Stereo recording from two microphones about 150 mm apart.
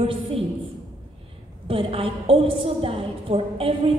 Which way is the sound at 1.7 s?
40° right (ahead or behind).